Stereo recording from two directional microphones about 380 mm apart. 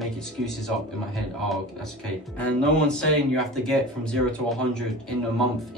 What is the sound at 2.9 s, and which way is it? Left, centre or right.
Speech, centre.